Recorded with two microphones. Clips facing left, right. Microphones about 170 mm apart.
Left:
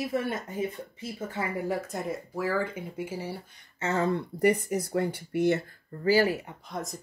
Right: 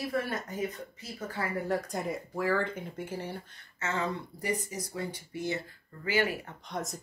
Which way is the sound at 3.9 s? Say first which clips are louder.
Left 7 dB; 60° left (ahead or behind).